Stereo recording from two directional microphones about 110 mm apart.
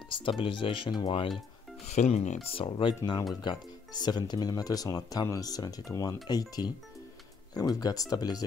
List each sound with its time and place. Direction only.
0.1 s speech: 50° left (ahead or behind)
1.9 s speech: 90° left
2.4 s speech: 60° left (ahead or behind)
3.3 s speech: 40° left (ahead or behind)